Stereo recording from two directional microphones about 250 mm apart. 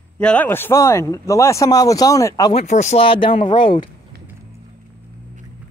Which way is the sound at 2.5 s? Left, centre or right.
Left.